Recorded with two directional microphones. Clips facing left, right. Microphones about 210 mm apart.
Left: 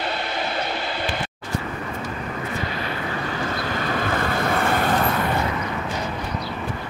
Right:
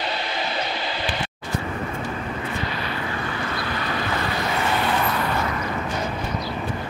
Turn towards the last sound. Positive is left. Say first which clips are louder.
# left 2 dB
turn(degrees=50)  # may be behind; listen again after turning